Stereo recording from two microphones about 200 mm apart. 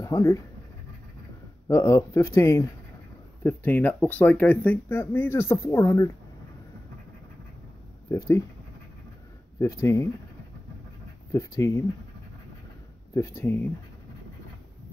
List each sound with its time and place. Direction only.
0.0 s speech: 15° left (ahead or behind)
1.7 s speech: 15° left (ahead or behind)
8.1 s speech: 15° left (ahead or behind)
9.6 s speech: 15° left (ahead or behind)
11.3 s speech: 15° left (ahead or behind)
13.1 s speech: 15° left (ahead or behind)